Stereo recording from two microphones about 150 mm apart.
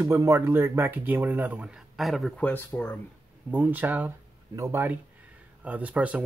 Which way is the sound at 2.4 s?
10° left (ahead or behind).